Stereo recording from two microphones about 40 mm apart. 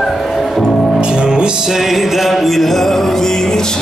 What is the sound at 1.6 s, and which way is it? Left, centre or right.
Music, centre.